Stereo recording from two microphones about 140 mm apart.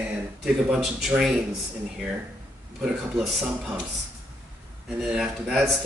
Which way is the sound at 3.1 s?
5° right (ahead or behind).